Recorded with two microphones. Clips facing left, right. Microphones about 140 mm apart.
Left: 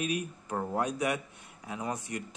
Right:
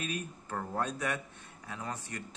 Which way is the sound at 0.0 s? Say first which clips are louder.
Left 5 dB; 15° left (ahead or behind).